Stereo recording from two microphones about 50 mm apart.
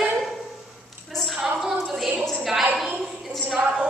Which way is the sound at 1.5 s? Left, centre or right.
Centre.